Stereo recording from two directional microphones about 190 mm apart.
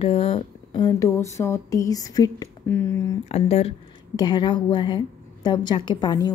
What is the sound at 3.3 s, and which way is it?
A woman's voice, 30° left (ahead or behind).